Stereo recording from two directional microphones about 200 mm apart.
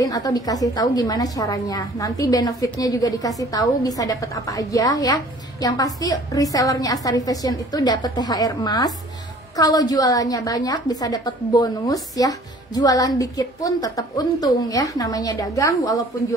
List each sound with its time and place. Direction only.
0.0 s a woman's voice: 15° left (ahead or behind)